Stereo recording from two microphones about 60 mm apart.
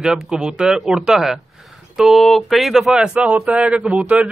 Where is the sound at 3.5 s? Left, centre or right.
Centre.